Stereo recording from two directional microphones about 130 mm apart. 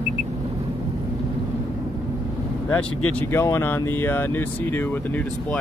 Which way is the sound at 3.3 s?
15° left (ahead or behind).